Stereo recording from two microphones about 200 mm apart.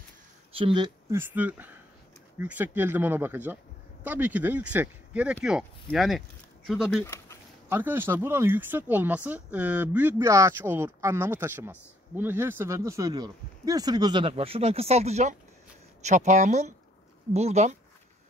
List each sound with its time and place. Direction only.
0.6 s speech: 25° right (ahead or behind)